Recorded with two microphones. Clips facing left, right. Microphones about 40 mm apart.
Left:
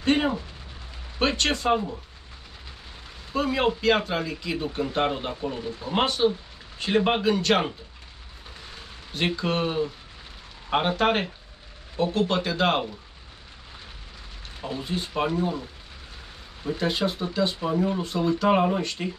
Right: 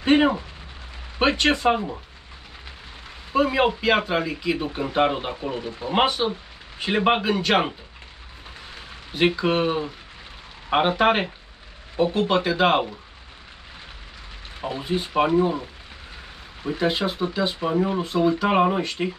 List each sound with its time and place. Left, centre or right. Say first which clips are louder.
0.0 s a sound: right 5 dB; right
1.2 s speech: right 4 dB; centre
3.3 s speech: right 4 dB; centre
9.1 s speech: right 5 dB; centre
14.6 s speech: right 4 dB; right
16.6 s speech: right 2 dB; centre